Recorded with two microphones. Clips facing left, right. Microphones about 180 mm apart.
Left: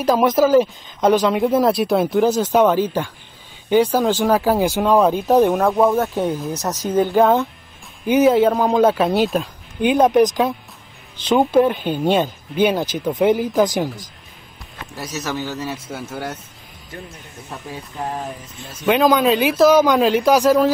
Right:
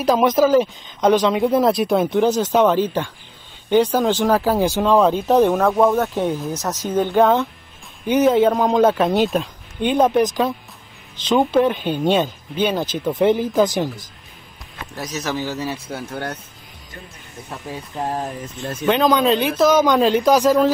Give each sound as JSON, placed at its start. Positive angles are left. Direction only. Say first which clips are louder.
{"t": 0.0, "sound": "speech", "louder": "even", "side_deg": 5}
{"t": 6.6, "sound": "speech", "louder": "left 3 dB", "side_deg": 10}
{"t": 13.0, "sound": "speech", "louder": "even", "side_deg": 0}
{"t": 13.6, "sound": "speech", "louder": "even", "side_deg": 15}
{"t": 15.0, "sound": "speech", "louder": "right 1 dB", "side_deg": 5}
{"t": 18.6, "sound": "speech", "louder": "right 10 dB", "side_deg": -55}
{"t": 18.9, "sound": "speech", "louder": "left 1 dB", "side_deg": 5}